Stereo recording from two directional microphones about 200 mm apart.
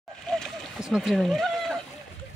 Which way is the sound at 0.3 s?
Centre (ahead or behind).